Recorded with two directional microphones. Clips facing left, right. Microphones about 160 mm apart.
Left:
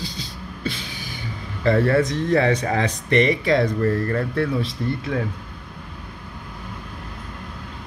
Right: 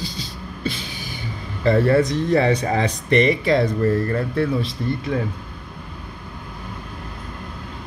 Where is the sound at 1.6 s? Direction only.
30° right (ahead or behind).